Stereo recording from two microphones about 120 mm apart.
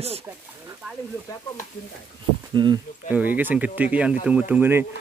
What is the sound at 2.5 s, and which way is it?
Speech, 40° right (ahead or behind).